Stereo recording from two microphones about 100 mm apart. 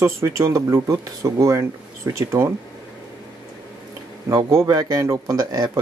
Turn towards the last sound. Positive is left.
turn(degrees=-40)  # may be behind; listen again after turning